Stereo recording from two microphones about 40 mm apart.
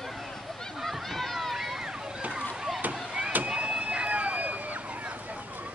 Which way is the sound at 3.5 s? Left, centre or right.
Right.